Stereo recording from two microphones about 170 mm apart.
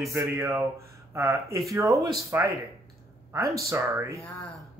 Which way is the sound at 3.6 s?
15° right (ahead or behind).